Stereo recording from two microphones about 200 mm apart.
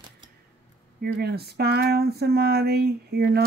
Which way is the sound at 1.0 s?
55° right (ahead or behind).